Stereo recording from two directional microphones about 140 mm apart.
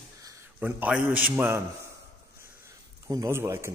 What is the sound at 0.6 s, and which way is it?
A man's voice, 10° right (ahead or behind).